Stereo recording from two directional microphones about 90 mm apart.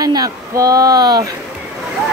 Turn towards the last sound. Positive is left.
turn(degrees=-45)  # may be behind; listen again after turning